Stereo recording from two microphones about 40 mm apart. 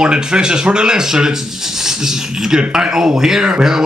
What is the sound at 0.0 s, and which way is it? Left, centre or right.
Speech, centre.